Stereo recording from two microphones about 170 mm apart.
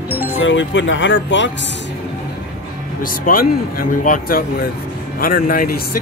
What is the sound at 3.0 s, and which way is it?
Speech, 55° left (ahead or behind).